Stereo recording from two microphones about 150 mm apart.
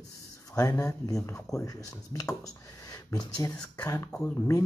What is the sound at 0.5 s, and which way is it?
Speech, 20° left (ahead or behind).